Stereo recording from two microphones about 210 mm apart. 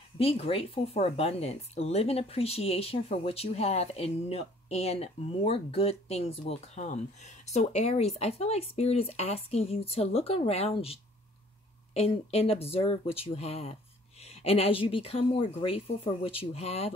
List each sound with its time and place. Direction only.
0.2 s speech: 30° left (ahead or behind)